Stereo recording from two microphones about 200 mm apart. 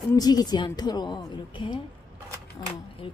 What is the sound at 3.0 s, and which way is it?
Speech, 25° left (ahead or behind).